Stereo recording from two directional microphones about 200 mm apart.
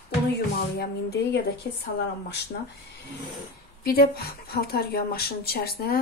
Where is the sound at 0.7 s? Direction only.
55° left (ahead or behind).